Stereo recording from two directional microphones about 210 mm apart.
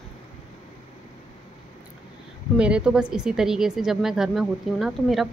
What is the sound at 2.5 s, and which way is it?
A woman's voice, 5° right (ahead or behind).